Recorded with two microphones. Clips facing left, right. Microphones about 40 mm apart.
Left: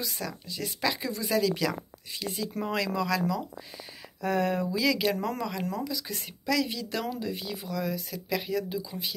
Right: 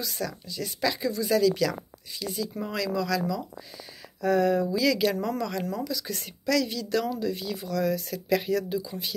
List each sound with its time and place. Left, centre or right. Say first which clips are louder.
0.0 s speech: right 2 dB; left
4.2 s speech: right 4 dB; left
4.6 s speech: right 2 dB; centre